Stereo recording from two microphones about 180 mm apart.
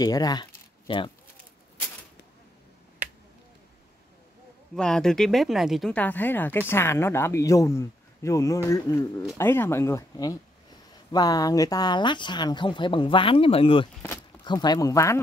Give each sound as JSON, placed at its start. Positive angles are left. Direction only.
{"t": 0.0, "sound": "speech", "side_deg": 20}
{"t": 4.7, "sound": "speech", "side_deg": 5}